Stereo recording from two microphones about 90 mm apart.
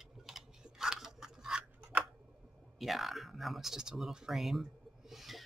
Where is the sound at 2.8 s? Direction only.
Centre (ahead or behind).